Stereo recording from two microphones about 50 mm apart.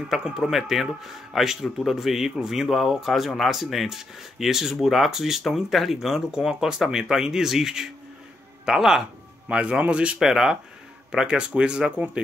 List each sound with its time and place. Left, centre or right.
0.1 s a man's voice: centre
9.5 s speech: right
10.2 s a man's voice: centre